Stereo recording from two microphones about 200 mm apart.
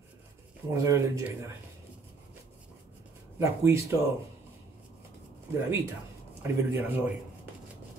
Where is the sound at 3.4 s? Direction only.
15° right (ahead or behind).